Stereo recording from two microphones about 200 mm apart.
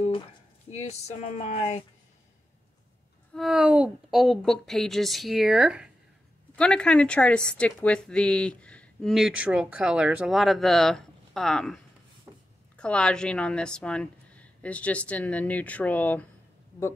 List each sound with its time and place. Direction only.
0.7 s speech: 35° left (ahead or behind)
3.3 s a woman's voice: centre (ahead or behind)